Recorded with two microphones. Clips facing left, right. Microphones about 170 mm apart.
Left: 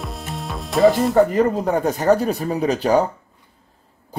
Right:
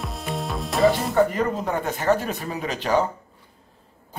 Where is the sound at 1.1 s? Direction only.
40° left (ahead or behind).